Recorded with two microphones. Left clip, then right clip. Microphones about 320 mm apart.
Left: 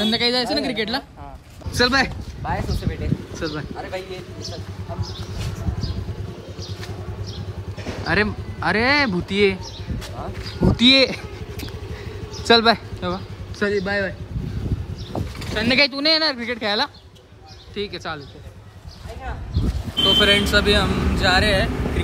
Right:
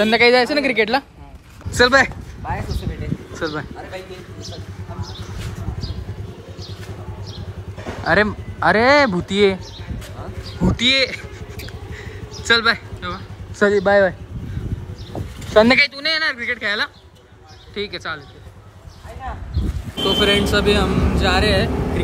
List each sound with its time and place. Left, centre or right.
0.0 s a woman's voice: centre
1.7 s speech: centre
8.0 s speech: centre
10.4 s speech: centre
12.0 s a sound: centre
13.7 s speech: centre
15.3 s a sound: centre
15.9 s speech: centre
20.0 s speech: centre